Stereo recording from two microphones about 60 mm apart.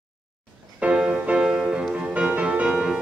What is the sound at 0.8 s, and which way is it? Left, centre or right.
Music, right.